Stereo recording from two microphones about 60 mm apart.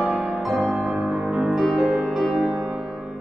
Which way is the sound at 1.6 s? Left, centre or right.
Centre.